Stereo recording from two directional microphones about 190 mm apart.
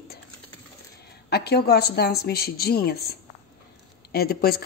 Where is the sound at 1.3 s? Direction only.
55° left (ahead or behind).